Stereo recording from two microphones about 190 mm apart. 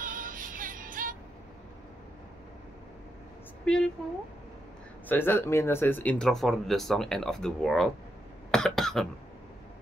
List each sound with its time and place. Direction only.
0.0 s music: 45° right (ahead or behind)
3.6 s speech: 5° left (ahead or behind)
5.0 s speech: 10° left (ahead or behind)